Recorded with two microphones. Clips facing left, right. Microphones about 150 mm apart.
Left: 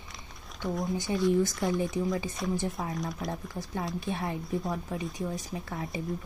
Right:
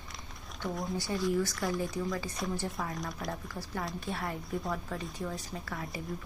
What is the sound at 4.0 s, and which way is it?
Speech, 20° left (ahead or behind).